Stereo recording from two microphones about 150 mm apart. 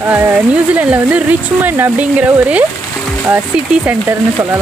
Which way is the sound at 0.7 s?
10° right (ahead or behind).